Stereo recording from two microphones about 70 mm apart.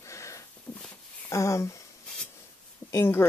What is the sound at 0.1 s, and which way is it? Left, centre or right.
Sniff, left.